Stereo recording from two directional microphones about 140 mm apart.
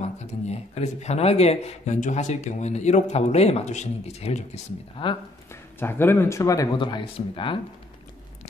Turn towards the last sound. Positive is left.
turn(degrees=40)  # may be behind; listen again after turning